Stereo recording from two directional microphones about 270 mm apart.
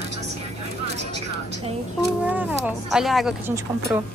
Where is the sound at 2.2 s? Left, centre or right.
Centre.